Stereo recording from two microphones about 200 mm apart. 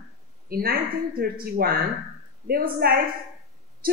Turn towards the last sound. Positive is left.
turn(degrees=-50)  # may be behind; listen again after turning